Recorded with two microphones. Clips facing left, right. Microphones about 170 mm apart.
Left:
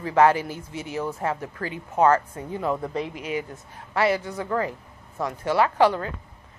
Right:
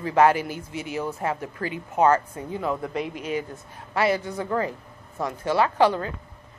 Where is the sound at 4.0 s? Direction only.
20° right (ahead or behind).